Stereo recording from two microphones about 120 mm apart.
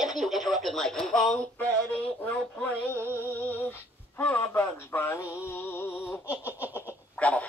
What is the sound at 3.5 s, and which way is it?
Speech, 20° left (ahead or behind).